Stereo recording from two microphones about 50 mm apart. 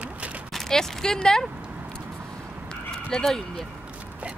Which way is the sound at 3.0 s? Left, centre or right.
Centre.